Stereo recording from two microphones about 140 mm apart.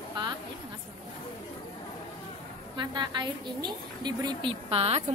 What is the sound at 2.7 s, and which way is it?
A woman's voice, 30° right (ahead or behind).